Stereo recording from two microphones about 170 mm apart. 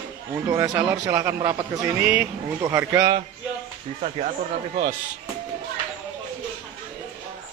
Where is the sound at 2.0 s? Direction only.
10° right (ahead or behind).